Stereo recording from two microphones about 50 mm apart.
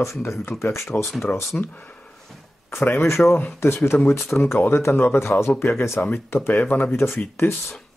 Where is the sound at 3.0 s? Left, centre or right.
Left.